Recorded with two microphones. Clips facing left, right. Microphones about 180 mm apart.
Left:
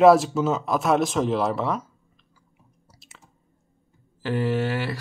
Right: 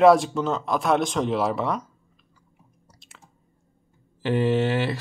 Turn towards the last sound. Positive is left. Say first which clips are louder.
# right 3 dB
turn(degrees=-20)  # may be behind; listen again after turning